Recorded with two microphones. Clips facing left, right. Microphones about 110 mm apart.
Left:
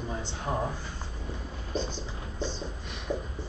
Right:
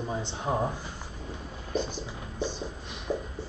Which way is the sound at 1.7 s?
15° right (ahead or behind).